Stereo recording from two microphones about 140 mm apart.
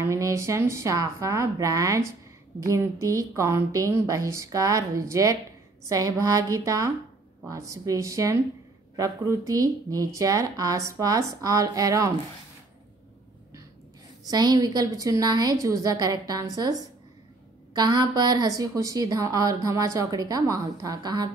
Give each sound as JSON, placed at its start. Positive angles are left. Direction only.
{"t": 0.0, "sound": "a woman's voice", "side_deg": -20}
{"t": 14.2, "sound": "a woman's voice", "side_deg": -30}
{"t": 17.7, "sound": "a woman's voice", "side_deg": -30}